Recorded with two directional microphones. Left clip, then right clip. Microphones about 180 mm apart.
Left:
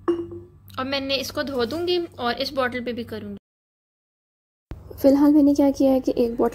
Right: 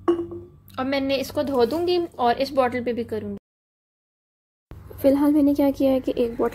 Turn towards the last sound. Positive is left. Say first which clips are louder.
# left 2 dB
turn(degrees=20)  # may be behind; listen again after turning